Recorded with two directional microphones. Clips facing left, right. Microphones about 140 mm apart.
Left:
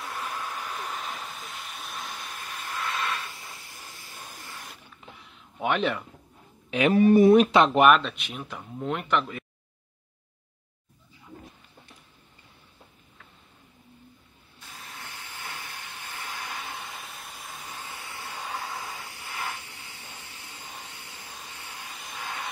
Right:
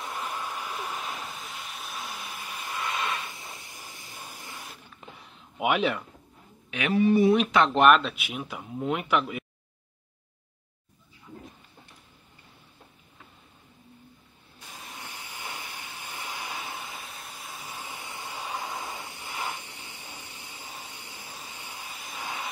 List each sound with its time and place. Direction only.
0.0 s hiss: 15° right (ahead or behind)
5.6 s speech: 5° right (ahead or behind)
6.7 s speech: 40° left (ahead or behind)
7.7 s speech: centre (ahead or behind)
14.6 s steam: 15° right (ahead or behind)
22.2 s vehicle: 10° right (ahead or behind)